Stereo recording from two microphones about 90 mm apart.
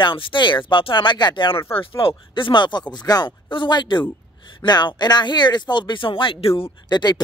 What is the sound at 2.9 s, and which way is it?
Speech, 50° left (ahead or behind).